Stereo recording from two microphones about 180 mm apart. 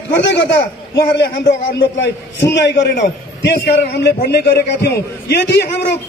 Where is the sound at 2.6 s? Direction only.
75° left (ahead or behind).